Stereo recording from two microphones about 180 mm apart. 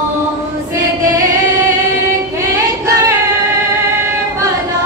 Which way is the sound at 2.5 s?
15° right (ahead or behind).